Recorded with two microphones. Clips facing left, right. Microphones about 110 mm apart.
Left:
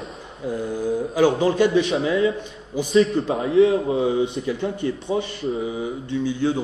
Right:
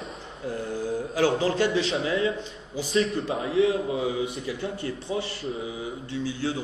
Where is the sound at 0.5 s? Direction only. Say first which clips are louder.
Left 5 dB; 15° left (ahead or behind).